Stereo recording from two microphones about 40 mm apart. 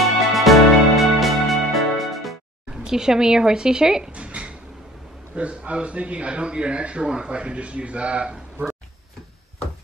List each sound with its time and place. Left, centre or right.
0.0 s music: centre
2.8 s a woman's voice: centre
4.2 s a sound: right
5.3 s speech: right